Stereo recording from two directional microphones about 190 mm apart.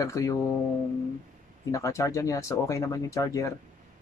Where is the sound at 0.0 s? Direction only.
15° left (ahead or behind).